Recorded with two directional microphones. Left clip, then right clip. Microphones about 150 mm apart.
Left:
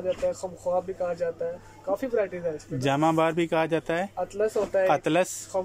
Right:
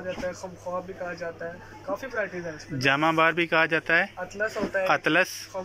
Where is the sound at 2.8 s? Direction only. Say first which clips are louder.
Right 2 dB; 25° left (ahead or behind).